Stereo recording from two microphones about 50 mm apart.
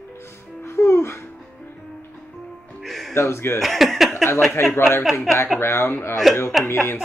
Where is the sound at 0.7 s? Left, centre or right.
Left.